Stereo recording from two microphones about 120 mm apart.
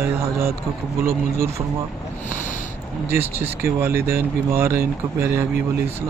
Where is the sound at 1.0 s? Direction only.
25° right (ahead or behind).